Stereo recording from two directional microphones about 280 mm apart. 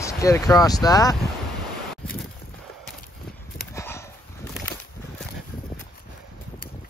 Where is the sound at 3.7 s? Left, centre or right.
Centre.